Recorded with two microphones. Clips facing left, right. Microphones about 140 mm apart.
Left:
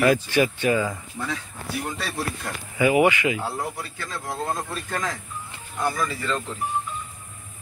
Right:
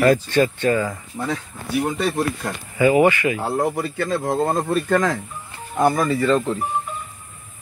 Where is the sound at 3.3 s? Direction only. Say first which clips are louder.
Right 7 dB; 50° right (ahead or behind).